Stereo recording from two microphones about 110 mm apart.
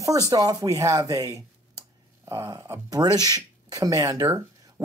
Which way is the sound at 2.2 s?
30° right (ahead or behind).